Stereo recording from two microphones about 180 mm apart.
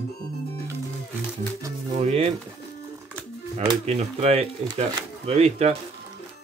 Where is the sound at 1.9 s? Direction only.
35° right (ahead or behind).